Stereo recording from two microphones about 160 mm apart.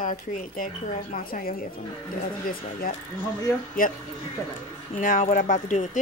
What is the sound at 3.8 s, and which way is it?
Speech, 60° left (ahead or behind).